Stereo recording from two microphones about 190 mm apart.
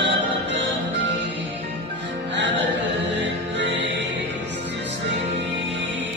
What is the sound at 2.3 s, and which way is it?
Music, 70° right (ahead or behind).